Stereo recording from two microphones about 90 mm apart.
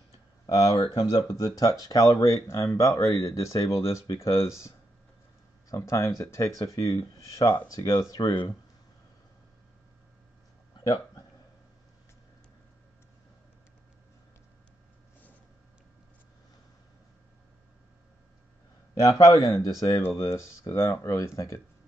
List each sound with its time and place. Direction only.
0.1 s a sound: 40° left (ahead or behind)
0.7 s speech: 70° left (ahead or behind)
1.4 s speech: 45° left (ahead or behind)
10.8 s a sound: 45° left (ahead or behind)
18.9 s a man's voice: 45° left (ahead or behind)
20.2 s speech: 35° left (ahead or behind)